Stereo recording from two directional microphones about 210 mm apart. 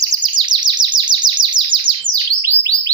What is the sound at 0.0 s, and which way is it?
Chirp, 20° right (ahead or behind).